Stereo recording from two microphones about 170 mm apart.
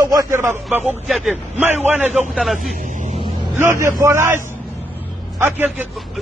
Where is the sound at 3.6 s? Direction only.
15° right (ahead or behind).